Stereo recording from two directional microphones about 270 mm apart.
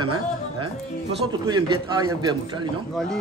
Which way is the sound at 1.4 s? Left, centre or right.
Centre.